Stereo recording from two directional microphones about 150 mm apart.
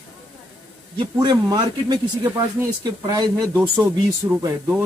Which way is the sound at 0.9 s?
30° right (ahead or behind).